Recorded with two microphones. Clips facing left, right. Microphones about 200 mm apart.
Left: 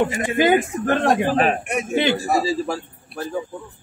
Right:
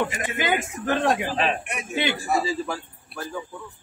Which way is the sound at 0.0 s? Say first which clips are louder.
Left 8 dB; 25° left (ahead or behind).